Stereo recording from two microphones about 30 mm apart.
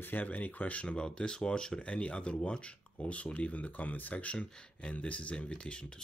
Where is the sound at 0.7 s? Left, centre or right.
Left.